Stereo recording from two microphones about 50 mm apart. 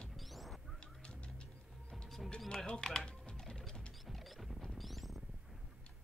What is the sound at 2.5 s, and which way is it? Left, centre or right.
Typing, centre.